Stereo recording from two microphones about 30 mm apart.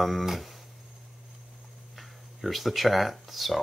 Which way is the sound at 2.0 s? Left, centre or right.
Centre.